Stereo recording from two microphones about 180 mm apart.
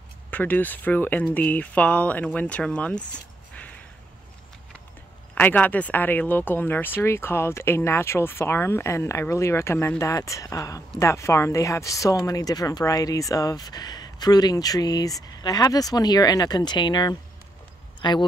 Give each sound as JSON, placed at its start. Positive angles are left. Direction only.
{"t": 0.3, "sound": "speech", "side_deg": 10}
{"t": 3.5, "sound": "a sound", "side_deg": 10}
{"t": 5.3, "sound": "speech", "side_deg": 10}